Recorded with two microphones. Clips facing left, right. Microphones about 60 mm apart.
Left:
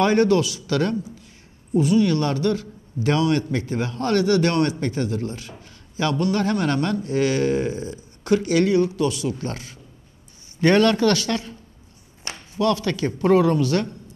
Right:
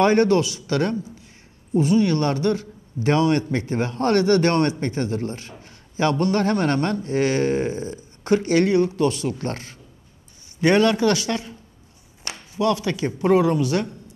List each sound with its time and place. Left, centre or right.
0.0 s a man's voice: right
10.6 s a man's voice: centre
12.5 s a man's voice: right